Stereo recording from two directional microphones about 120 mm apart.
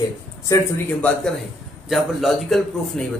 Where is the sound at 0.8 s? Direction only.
5° left (ahead or behind).